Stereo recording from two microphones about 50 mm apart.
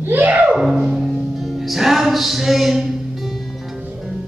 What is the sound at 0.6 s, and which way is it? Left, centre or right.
Music, centre.